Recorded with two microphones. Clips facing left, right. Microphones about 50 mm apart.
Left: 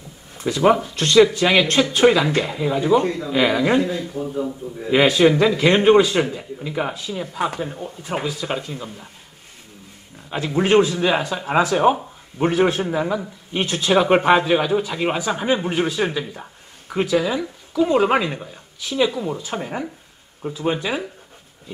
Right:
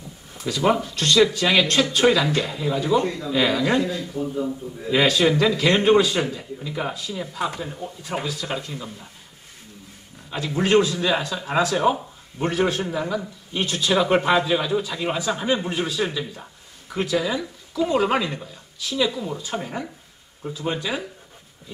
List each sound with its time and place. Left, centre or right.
0.5 s speech: left
10.3 s speech: left